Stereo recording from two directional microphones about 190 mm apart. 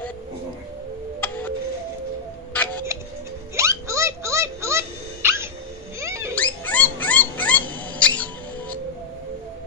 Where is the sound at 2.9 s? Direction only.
15° right (ahead or behind).